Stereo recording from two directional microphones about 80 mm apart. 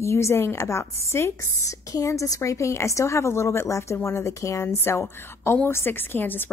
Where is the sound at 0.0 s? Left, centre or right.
Left.